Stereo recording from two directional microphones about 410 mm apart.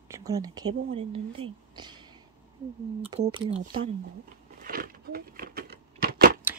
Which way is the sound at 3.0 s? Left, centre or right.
Centre.